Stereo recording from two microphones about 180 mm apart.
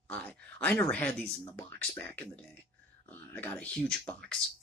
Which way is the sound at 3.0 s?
10° left (ahead or behind).